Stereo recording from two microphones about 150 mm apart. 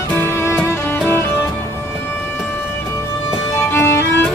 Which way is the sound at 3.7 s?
15° left (ahead or behind).